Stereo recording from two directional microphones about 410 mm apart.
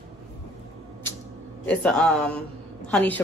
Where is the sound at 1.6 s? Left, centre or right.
Centre.